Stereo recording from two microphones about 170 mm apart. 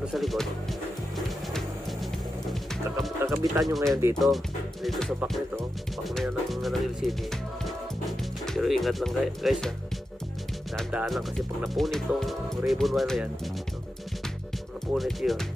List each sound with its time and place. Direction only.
0.0 s speech: centre (ahead or behind)
1.1 s music: centre (ahead or behind)
3.2 s music: 15° right (ahead or behind)
3.5 s speech: centre (ahead or behind)
3.9 s speech: 15° right (ahead or behind)
4.8 s speech: centre (ahead or behind)
10.9 s speech: 5° right (ahead or behind)
15.0 s speech: centre (ahead or behind)